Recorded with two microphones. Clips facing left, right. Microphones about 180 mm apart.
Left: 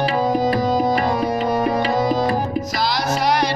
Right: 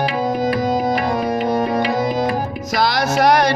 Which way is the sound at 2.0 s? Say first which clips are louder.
Even; 35° left (ahead or behind).